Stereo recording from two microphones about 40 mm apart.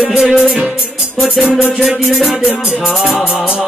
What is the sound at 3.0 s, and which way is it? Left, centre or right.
Music, left.